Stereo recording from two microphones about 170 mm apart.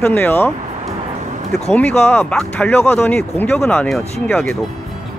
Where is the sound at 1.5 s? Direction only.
5° left (ahead or behind).